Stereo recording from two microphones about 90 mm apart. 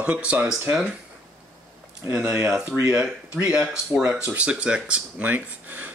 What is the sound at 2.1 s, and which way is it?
Speech, 10° right (ahead or behind).